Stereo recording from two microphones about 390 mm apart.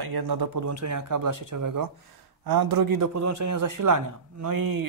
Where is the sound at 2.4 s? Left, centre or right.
Right.